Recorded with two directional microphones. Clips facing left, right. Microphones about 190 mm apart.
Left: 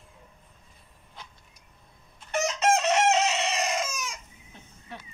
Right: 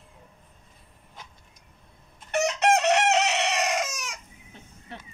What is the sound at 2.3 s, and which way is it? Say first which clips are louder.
Chicken: right 2 dB; 65° right (ahead or behind).